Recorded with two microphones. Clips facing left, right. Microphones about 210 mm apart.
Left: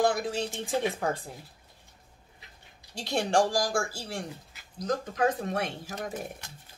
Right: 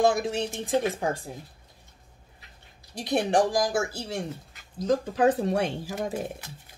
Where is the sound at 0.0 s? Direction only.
25° right (ahead or behind).